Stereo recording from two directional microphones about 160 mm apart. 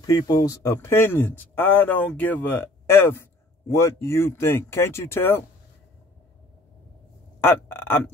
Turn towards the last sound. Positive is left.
turn(degrees=15)  # may be behind; listen again after turning